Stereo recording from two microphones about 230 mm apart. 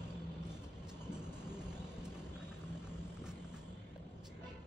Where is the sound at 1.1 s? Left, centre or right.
Centre.